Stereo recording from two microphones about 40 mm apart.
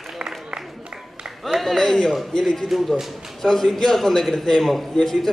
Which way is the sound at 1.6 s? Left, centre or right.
Centre.